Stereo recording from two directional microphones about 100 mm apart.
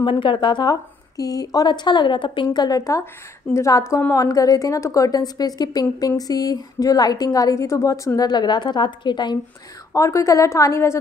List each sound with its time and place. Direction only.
0.0 s a woman's voice: 60° left (ahead or behind)
9.9 s a woman's voice: 30° left (ahead or behind)